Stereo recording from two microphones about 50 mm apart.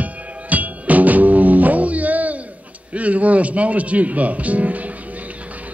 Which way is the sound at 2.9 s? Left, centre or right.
Right.